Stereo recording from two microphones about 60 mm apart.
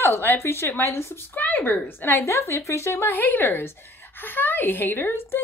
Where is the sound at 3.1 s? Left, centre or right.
Left.